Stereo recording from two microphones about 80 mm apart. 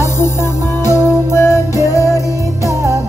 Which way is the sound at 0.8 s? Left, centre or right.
Left.